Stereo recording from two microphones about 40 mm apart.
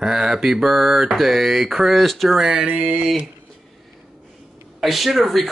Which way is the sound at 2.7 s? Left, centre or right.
Right.